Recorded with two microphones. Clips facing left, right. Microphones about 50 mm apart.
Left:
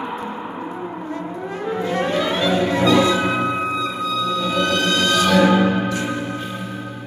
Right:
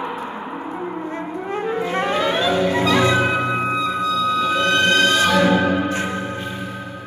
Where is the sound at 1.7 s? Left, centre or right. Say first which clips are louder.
Left 2 dB; right.